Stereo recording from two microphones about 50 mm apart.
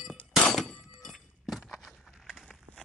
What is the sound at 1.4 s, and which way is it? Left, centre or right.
Keys jangling, centre.